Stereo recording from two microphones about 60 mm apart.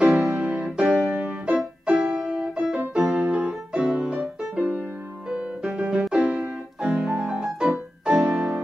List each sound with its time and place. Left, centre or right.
0.4 s music: centre
6.8 s piano: centre
7.2 s music: centre